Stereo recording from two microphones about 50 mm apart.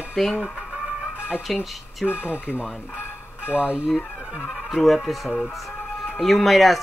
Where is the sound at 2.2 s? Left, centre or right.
Right.